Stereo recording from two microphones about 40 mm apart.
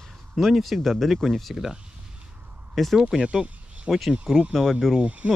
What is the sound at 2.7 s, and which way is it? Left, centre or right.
Speech, centre.